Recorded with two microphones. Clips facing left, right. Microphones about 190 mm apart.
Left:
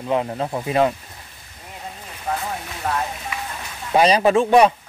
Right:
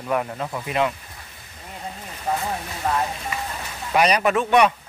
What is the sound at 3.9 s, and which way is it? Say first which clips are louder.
Speech: left 4 dB; 25° left (ahead or behind).